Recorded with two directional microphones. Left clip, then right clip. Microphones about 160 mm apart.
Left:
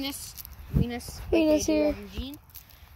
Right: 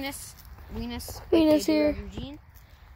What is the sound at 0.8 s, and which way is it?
Speech, 40° right (ahead or behind).